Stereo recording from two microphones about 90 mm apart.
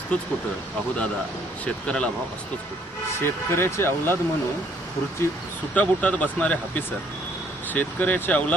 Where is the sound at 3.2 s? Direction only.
25° left (ahead or behind).